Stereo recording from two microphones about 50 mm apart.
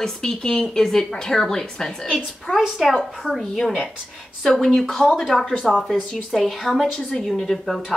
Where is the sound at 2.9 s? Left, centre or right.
Centre.